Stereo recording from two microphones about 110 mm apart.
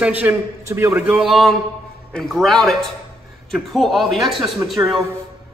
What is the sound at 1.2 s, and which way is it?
A man's voice, centre (ahead or behind).